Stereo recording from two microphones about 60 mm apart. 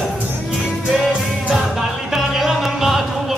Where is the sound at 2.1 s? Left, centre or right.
Centre.